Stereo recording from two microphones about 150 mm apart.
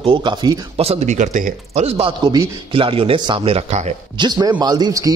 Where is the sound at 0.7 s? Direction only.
40° right (ahead or behind); by 1.8 s 60° right (ahead or behind).